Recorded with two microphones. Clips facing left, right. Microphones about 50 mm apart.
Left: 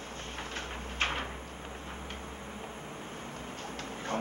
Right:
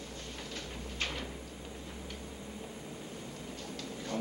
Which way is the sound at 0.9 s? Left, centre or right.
Left.